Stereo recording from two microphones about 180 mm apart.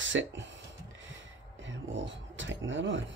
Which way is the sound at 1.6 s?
90° right.